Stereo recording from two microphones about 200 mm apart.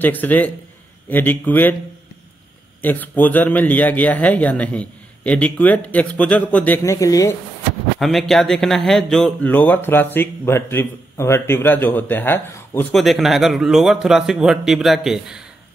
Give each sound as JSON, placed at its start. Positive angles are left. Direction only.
{"t": 0.0, "sound": "speech", "side_deg": 10}
{"t": 2.8, "sound": "speech", "side_deg": 10}
{"t": 8.0, "sound": "speech", "side_deg": 0}
{"t": 13.0, "sound": "a man's voice", "side_deg": 0}